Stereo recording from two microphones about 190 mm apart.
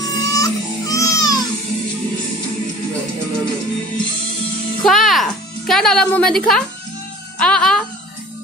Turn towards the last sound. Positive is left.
turn(degrees=5)  # may be behind; listen again after turning